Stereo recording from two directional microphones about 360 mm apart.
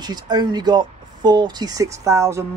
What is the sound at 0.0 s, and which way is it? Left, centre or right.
Speech, centre.